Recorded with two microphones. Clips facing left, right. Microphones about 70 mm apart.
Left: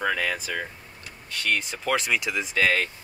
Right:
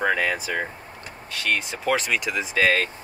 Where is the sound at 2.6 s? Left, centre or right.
Centre.